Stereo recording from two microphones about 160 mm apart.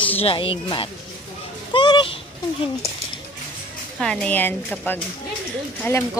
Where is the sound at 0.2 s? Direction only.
35° left (ahead or behind).